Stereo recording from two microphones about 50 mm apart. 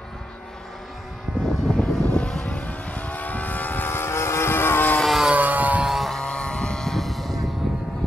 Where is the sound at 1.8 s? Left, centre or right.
Left.